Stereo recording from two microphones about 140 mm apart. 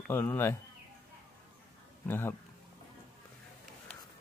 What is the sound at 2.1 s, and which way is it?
Speech, 15° left (ahead or behind).